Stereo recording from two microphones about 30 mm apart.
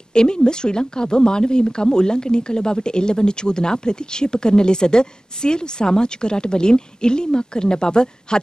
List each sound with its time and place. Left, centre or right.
0.1 s a woman's voice: left